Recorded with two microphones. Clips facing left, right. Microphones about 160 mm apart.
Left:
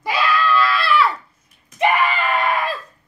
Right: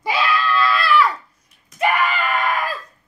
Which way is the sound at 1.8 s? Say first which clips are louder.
Left 1 dB; 30° left (ahead or behind).